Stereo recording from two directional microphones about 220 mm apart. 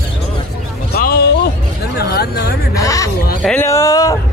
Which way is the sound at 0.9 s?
45° left (ahead or behind).